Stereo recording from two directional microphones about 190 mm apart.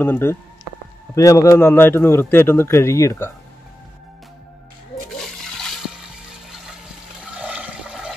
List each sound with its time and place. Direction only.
0.0 s speech: 10° left (ahead or behind)
7.3 s toilet flush: 5° right (ahead or behind)